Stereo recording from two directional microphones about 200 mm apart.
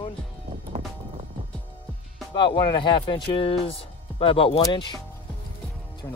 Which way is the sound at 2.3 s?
25° left (ahead or behind).